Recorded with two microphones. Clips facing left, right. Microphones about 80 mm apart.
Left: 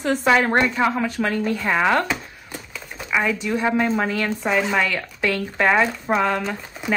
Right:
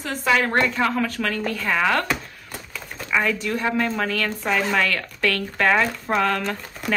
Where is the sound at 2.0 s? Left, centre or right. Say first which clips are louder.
Even; centre.